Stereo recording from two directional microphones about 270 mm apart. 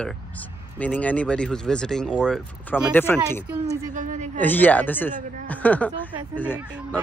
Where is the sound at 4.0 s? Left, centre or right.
Right.